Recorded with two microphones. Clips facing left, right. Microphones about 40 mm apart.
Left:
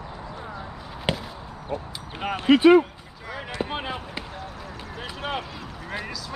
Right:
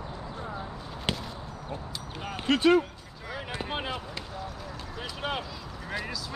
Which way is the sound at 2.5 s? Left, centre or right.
Centre.